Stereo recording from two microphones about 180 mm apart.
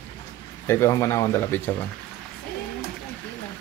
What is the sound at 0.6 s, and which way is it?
Speech, 15° left (ahead or behind).